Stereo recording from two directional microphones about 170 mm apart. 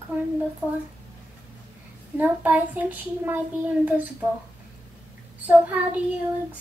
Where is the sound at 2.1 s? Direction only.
10° right (ahead or behind).